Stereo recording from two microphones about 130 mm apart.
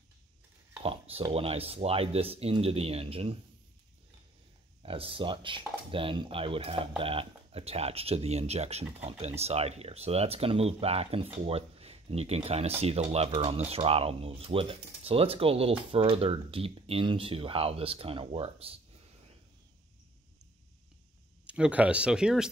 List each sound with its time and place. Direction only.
0.8 s speech: 45° right (ahead or behind)
4.8 s speech: 45° right (ahead or behind)
11.4 s a sound: 50° right (ahead or behind)
12.4 s speech: 50° right (ahead or behind)
21.5 s speech: 10° right (ahead or behind)